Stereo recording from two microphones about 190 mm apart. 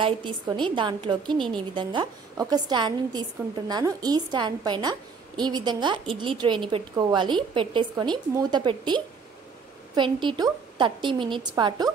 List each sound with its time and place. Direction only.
0.0 s a woman's voice: 25° right (ahead or behind)